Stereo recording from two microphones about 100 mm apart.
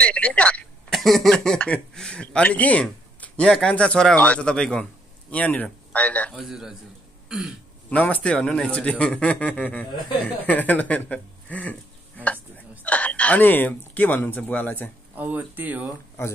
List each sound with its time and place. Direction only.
0.0 s a sound: 15° left (ahead or behind)
0.9 s speech: centre (ahead or behind)
6.3 s a man's voice: 5° right (ahead or behind)
7.2 s throat clearing: 5° right (ahead or behind)
7.9 s speech: 15° left (ahead or behind)
12.8 s speech: 15° left (ahead or behind)
15.1 s speech: 15° right (ahead or behind)